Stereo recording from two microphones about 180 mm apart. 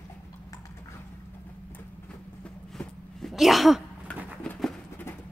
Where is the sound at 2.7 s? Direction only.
Centre (ahead or behind).